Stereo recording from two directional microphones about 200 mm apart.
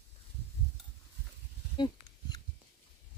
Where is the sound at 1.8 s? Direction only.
20° left (ahead or behind).